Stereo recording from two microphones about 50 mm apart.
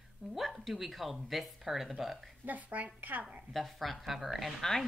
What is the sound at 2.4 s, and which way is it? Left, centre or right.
Speech, right.